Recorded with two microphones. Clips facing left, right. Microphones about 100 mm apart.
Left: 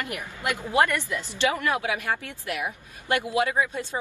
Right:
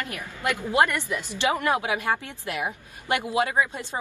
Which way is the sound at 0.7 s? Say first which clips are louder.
Even; 20° right (ahead or behind).